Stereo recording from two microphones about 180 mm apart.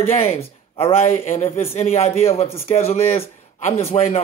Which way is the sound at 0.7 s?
35° left (ahead or behind).